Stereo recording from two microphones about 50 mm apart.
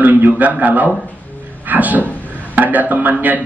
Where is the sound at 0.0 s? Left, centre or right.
Right.